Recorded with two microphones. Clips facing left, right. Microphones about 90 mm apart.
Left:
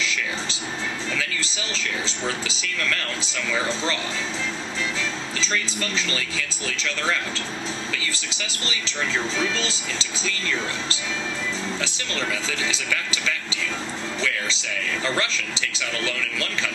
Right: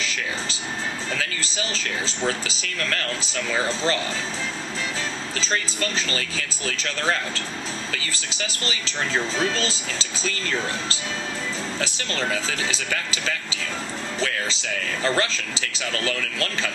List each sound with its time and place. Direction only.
1.1 s speech: 40° right (ahead or behind)
5.4 s speech: 40° right (ahead or behind)
15.0 s speech: 40° right (ahead or behind)